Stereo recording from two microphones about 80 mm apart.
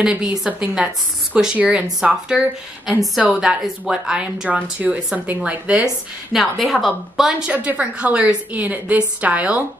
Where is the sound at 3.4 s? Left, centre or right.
Centre.